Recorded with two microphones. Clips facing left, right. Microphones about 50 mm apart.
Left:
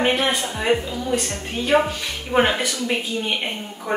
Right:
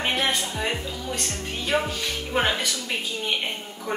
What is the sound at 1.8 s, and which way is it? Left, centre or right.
A woman's voice, left.